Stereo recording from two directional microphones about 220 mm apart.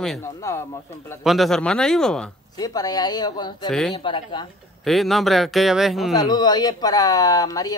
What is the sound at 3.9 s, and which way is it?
Speech, 20° left (ahead or behind).